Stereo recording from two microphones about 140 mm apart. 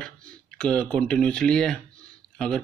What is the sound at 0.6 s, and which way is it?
Speech, 5° left (ahead or behind).